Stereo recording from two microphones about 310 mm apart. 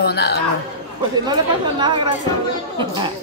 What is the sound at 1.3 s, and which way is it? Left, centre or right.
Speech, centre.